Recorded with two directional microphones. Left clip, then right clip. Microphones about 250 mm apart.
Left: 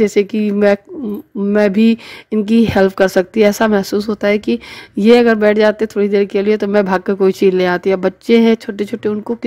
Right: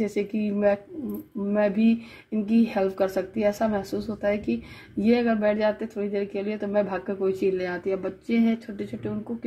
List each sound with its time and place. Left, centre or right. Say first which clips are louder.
0.0 s speech: left 14 dB; left